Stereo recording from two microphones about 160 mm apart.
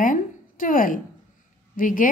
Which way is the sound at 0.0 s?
55° left (ahead or behind).